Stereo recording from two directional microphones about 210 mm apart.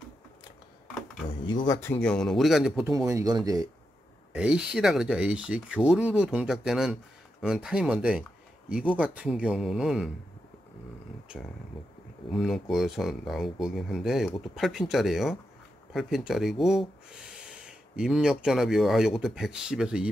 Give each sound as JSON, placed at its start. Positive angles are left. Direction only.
{"t": 1.4, "sound": "speech", "side_deg": 20}
{"t": 3.1, "sound": "speech", "side_deg": -15}
{"t": 4.3, "sound": "speech", "side_deg": -5}
{"t": 11.7, "sound": "speech", "side_deg": 0}